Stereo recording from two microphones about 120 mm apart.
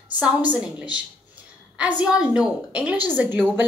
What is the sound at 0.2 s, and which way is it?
A woman's voice, 15° right (ahead or behind).